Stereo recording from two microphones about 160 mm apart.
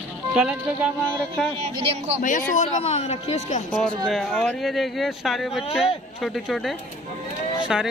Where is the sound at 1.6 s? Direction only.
40° right (ahead or behind).